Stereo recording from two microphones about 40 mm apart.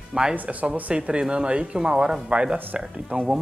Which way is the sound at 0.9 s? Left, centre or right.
Right.